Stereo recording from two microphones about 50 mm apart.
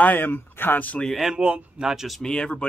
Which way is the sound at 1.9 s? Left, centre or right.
Centre.